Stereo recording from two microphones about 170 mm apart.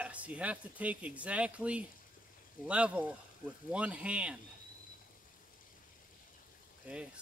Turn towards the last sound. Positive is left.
turn(degrees=-5)  # may be behind; listen again after turning